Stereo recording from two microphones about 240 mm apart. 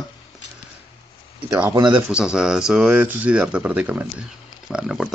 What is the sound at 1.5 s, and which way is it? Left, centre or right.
Speech, centre.